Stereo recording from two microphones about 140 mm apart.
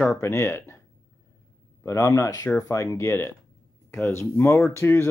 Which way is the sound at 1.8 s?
20° left (ahead or behind).